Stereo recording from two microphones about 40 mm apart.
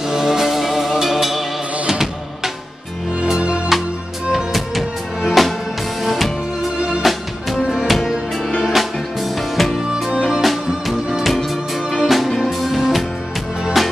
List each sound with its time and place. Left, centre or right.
0.1 s music: centre
3.3 s music: right
4.5 s music: centre